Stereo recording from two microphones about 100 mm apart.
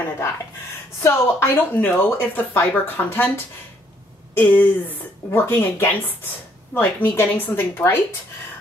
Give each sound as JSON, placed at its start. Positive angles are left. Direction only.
{"t": 1.0, "sound": "speech", "side_deg": 25}
{"t": 4.4, "sound": "speech", "side_deg": 15}